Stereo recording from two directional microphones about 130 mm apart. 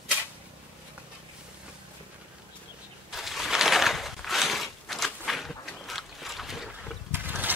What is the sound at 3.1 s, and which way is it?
Mechanisms, centre (ahead or behind).